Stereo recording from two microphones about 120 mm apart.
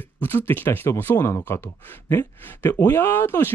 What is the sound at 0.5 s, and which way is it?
Speech, 20° left (ahead or behind).